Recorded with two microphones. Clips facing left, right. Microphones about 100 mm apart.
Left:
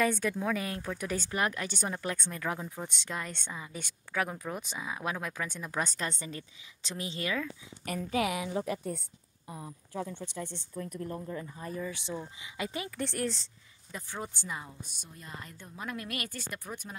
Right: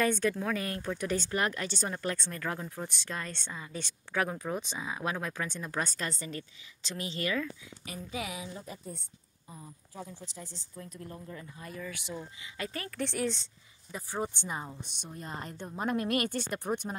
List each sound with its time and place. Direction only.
0.0 s speech: centre (ahead or behind)
4.2 s speech: centre (ahead or behind); by 7.3 s 15° left (ahead or behind)
7.8 s a woman's voice: 55° left (ahead or behind); by 9.0 s 80° left
9.5 s speech: 70° left (ahead or behind)
11.0 s speech: 35° left (ahead or behind)
12.2 s speech: 15° left (ahead or behind)
12.9 s speech: 5° left (ahead or behind)
14.2 s speech: 25° right (ahead or behind)
15.0 s speech: 35° right (ahead or behind)